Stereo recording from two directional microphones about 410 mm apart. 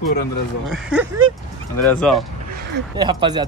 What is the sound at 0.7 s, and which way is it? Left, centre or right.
Speech, centre.